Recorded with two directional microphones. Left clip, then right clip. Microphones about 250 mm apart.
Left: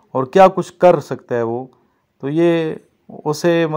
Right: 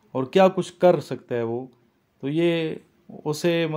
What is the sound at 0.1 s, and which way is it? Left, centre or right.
Speech, left.